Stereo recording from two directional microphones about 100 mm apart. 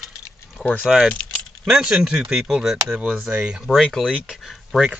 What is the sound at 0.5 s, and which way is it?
Speech, 10° left (ahead or behind).